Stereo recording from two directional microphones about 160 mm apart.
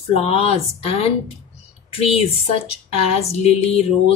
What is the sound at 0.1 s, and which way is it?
Speech, 40° left (ahead or behind).